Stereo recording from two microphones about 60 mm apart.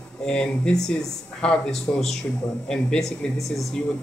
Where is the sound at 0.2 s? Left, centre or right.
Centre.